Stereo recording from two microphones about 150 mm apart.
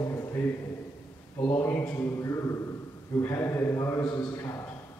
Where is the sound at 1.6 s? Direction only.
15° left (ahead or behind).